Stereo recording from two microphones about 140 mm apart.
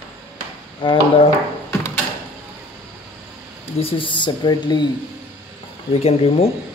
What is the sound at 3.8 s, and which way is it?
Speech, 35° left (ahead or behind).